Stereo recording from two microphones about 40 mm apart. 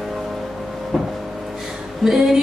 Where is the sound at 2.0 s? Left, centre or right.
Centre.